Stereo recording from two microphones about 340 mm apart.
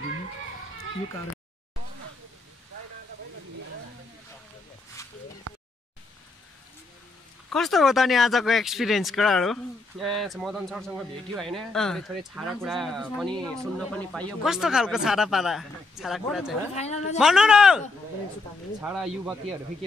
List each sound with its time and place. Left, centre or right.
7.4 s speech: centre
16.7 s speech: centre
17.2 s speech: centre